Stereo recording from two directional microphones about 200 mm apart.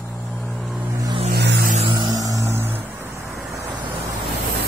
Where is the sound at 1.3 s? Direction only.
55° right (ahead or behind).